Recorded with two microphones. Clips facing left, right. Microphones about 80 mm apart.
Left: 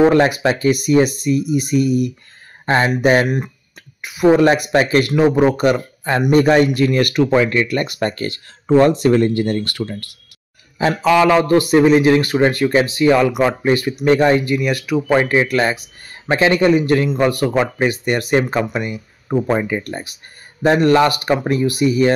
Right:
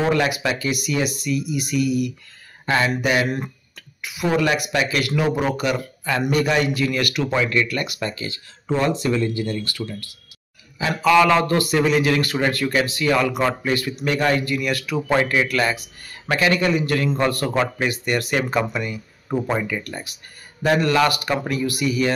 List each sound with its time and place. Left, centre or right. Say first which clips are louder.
0.0 s speech: left 7 dB; left
3.3 s a man's voice: left 4 dB; centre
4.0 s speech: left 9 dB; left
4.4 s speech: left 7 dB; left
10.8 s speech: left 7 dB; left
11.1 s a man's voice: left 2 dB; centre
13.6 s a man's voice: left 6 dB; left